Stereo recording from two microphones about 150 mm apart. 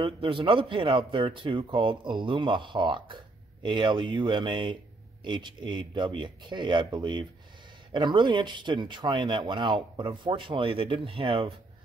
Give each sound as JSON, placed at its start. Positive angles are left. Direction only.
{"t": 0.0, "sound": "speech", "side_deg": -35}